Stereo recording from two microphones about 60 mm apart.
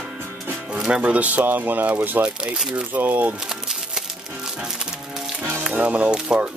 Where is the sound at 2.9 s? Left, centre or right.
Right.